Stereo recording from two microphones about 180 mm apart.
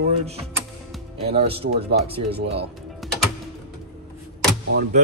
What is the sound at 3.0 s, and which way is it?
Music, centre (ahead or behind).